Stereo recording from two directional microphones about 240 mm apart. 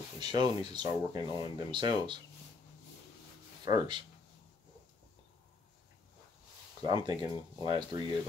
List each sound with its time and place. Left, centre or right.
0.2 s speech: centre
3.6 s speech: centre
6.8 s speech: centre